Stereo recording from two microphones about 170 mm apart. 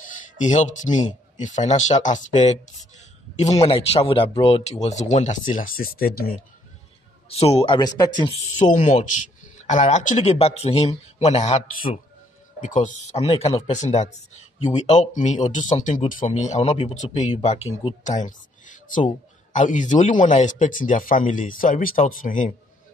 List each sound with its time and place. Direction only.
0.4 s speech: 45° left (ahead or behind)
7.2 s speech: 35° left (ahead or behind)
8.4 s speech: 45° left (ahead or behind)
12.5 s speech: 50° left (ahead or behind)